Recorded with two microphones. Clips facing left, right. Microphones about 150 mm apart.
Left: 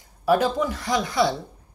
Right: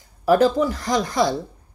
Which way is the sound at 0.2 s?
40° right (ahead or behind).